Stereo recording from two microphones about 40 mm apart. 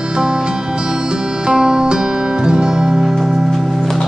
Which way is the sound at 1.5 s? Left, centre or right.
Centre.